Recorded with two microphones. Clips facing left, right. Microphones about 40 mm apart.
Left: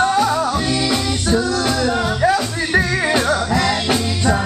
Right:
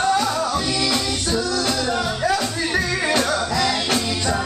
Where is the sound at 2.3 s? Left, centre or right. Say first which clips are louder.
Left 4 dB; left.